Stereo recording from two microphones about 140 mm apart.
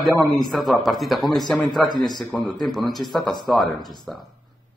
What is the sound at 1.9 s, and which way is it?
Speech, 30° left (ahead or behind).